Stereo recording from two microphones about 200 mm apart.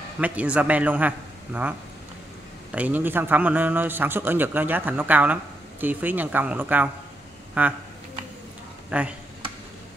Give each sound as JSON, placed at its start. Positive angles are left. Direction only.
{"t": 0.2, "sound": "a man's voice", "side_deg": -5}
{"t": 8.9, "sound": "a man's voice", "side_deg": -5}